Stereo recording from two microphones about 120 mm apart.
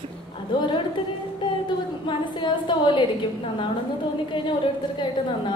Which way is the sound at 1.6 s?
40° left (ahead or behind).